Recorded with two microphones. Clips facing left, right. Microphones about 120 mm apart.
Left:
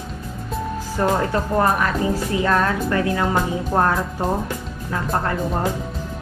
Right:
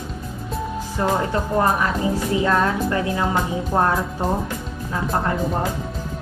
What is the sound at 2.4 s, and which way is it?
Music, 25° right (ahead or behind).